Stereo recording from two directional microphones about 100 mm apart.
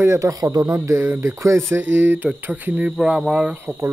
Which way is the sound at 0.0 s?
30° right (ahead or behind).